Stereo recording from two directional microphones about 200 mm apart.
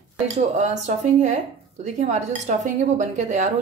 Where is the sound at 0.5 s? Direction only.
35° right (ahead or behind).